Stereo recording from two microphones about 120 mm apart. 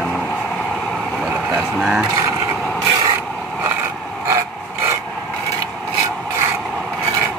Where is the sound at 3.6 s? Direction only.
20° right (ahead or behind).